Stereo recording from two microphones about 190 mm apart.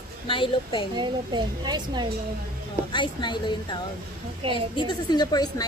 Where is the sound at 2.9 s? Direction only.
25° left (ahead or behind).